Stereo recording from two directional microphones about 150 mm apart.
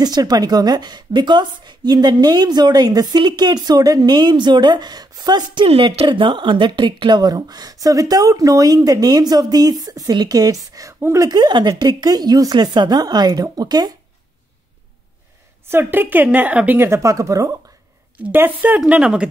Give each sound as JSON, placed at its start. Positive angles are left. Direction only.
{"t": 0.0, "sound": "a woman's voice", "side_deg": -25}
{"t": 15.7, "sound": "speech", "side_deg": -15}